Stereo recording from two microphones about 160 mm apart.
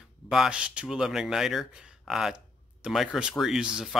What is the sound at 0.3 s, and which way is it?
Speech, 5° right (ahead or behind).